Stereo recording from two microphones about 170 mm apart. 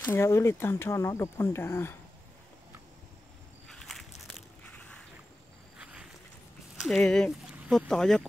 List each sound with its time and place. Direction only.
0.0 s speech: 15° left (ahead or behind)
3.6 s a sound: 5° left (ahead or behind)
6.8 s speech: centre (ahead or behind)